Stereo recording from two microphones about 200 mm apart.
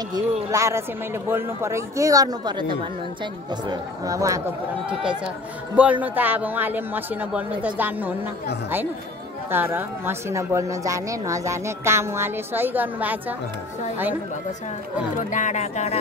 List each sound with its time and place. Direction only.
0.1 s a woman's voice: 15° right (ahead or behind)
5.8 s a woman's voice: 10° right (ahead or behind)
9.5 s a woman's voice: 10° right (ahead or behind)
15.1 s speech: 40° left (ahead or behind)